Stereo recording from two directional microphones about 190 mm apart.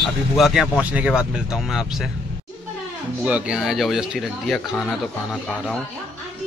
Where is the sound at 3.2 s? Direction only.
5° right (ahead or behind).